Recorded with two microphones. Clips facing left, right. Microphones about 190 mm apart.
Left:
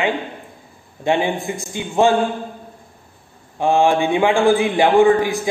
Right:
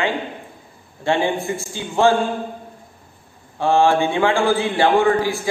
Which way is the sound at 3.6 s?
15° left (ahead or behind).